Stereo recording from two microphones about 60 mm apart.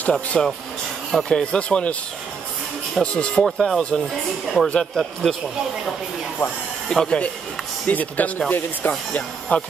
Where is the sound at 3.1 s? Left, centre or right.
Centre.